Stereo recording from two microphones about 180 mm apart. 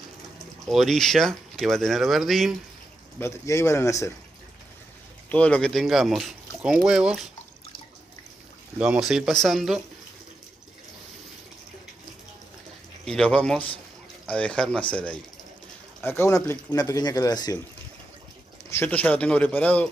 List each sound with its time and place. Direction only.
0.7 s speech: centre (ahead or behind)
3.2 s speech: 15° left (ahead or behind)
5.3 s speech: 5° left (ahead or behind)
8.7 s speech: 5° right (ahead or behind)
13.0 s speech: 5° left (ahead or behind); by 17.6 s 20° left (ahead or behind)
18.7 s speech: 10° left (ahead or behind)